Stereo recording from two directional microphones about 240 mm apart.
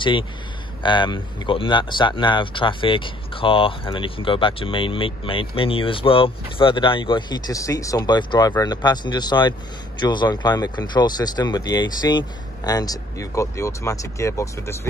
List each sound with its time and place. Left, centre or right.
0.8 s speech: centre